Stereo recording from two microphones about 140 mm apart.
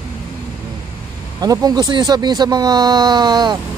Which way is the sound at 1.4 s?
25° right (ahead or behind).